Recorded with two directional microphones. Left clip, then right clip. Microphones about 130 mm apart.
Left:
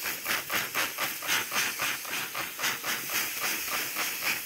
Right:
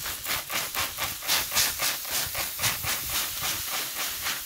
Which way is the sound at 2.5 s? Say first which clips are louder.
Right 1 dB; 40° right (ahead or behind).